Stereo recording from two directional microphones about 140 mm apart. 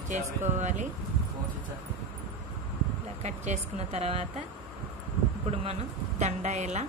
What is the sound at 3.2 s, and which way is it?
A woman's voice, 55° right (ahead or behind).